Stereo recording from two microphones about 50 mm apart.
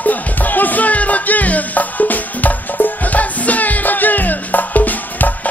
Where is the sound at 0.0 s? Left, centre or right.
Left.